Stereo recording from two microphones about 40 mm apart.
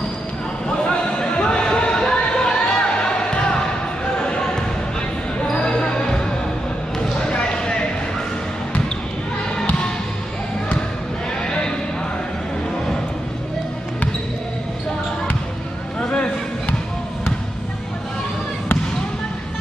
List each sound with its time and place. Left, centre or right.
0.7 s a sound: left
4.2 s basketball bounce: left
5.5 s basketball bounce: centre
7.2 s basketball bounce: centre
11.4 s horse: left
16.0 s a sound: left